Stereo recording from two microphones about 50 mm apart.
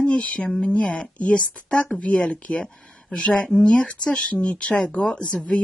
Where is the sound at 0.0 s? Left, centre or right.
Left.